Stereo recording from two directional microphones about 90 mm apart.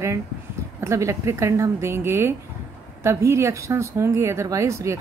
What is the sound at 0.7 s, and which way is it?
Speech, 35° right (ahead or behind).